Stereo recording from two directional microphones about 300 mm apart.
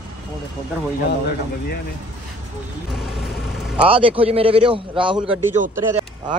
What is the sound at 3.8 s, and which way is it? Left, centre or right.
A man's voice, centre.